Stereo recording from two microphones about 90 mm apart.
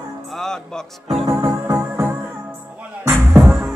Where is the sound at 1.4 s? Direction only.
30° right (ahead or behind).